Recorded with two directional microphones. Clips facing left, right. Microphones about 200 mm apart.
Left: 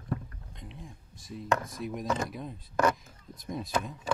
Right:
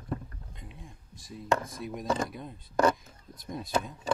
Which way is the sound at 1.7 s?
Centre (ahead or behind).